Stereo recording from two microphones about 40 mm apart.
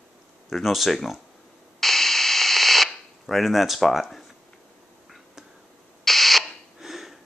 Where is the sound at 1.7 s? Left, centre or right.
Centre.